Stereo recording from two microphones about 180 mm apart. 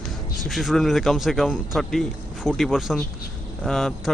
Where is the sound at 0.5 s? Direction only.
Centre (ahead or behind).